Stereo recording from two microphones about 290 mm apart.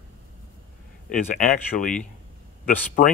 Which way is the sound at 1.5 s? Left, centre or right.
Left.